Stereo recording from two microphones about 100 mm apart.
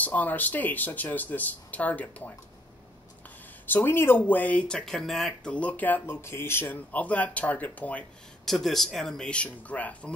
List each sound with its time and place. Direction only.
0.0 s speech: 15° left (ahead or behind)
3.6 s speech: 20° left (ahead or behind); by 5.5 s centre (ahead or behind)
5.5 s speech: 15° left (ahead or behind)
8.5 s speech: 5° left (ahead or behind)